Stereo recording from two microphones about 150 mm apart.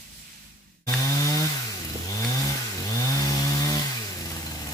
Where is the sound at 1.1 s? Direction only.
20° left (ahead or behind).